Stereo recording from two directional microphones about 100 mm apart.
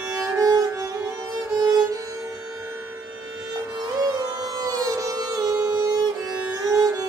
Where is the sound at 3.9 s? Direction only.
35° right (ahead or behind).